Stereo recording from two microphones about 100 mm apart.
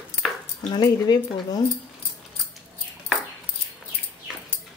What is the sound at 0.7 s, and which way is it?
Speech, 45° left (ahead or behind).